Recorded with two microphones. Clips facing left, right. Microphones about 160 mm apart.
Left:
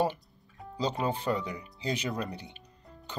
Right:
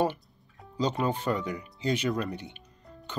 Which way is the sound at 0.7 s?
35° left (ahead or behind).